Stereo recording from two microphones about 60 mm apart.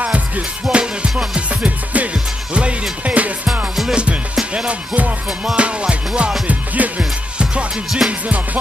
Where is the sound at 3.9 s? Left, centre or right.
Centre.